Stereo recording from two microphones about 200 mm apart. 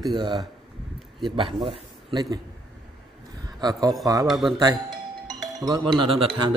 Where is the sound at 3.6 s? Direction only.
20° right (ahead or behind).